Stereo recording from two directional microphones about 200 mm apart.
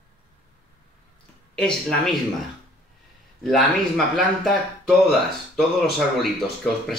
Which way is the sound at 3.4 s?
Centre (ahead or behind).